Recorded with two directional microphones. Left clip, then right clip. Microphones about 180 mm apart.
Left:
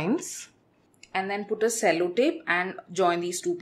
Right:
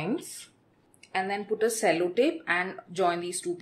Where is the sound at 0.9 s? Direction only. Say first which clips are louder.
Left 1 dB; 10° left (ahead or behind).